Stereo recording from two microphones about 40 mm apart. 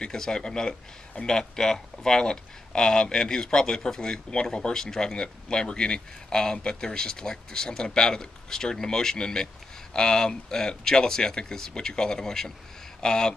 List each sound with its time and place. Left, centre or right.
0.0 s speech: centre